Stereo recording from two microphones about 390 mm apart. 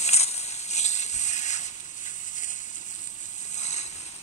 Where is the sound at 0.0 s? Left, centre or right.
Centre.